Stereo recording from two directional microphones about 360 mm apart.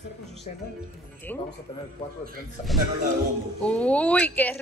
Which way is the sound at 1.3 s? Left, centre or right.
Centre.